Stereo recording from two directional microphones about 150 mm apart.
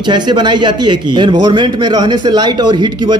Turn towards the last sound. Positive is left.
turn(degrees=-30)  # may be behind; listen again after turning